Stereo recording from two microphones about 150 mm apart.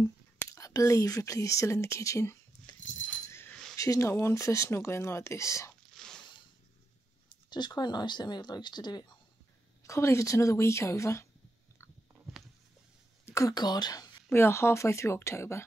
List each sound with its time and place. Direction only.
0.4 s speech: 20° left (ahead or behind)
3.3 s dog: 15° left (ahead or behind)
3.7 s speech: 20° left (ahead or behind)
5.9 s zipper: 5° left (ahead or behind)
7.4 s speech: 30° left (ahead or behind)
13.2 s speech: 20° left (ahead or behind)